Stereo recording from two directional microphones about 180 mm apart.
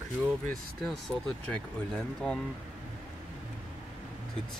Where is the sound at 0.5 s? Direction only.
Centre (ahead or behind).